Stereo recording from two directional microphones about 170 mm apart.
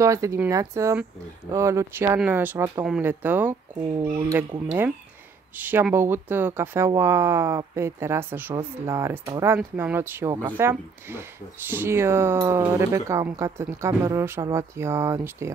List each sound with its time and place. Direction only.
0.0 s speech: 20° right (ahead or behind)
4.6 s speech: 5° right (ahead or behind)